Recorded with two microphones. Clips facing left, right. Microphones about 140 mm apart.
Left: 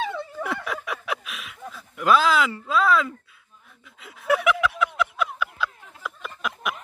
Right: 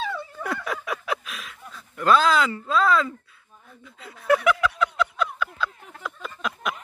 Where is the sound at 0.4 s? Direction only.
Centre (ahead or behind).